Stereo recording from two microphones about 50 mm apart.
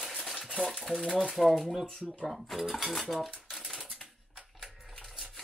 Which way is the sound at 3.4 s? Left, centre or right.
Centre.